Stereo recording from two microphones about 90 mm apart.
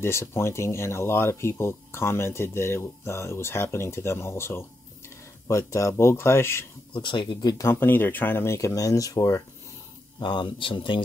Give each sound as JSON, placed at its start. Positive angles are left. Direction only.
{"t": 0.0, "sound": "speech", "side_deg": 30}
{"t": 6.9, "sound": "speech", "side_deg": 65}
{"t": 7.5, "sound": "speech", "side_deg": 25}
{"t": 8.5, "sound": "speech", "side_deg": 40}
{"t": 10.2, "sound": "speech", "side_deg": 60}